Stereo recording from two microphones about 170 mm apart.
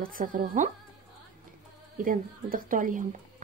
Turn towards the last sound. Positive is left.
turn(degrees=-50)  # may be behind; listen again after turning